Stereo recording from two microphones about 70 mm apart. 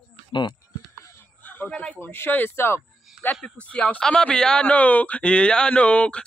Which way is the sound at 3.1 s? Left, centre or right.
Centre.